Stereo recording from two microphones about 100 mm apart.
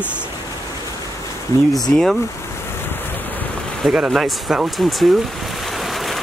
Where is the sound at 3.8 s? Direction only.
Centre (ahead or behind).